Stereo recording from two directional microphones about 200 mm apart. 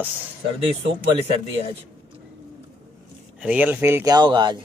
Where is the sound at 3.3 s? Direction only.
5° right (ahead or behind).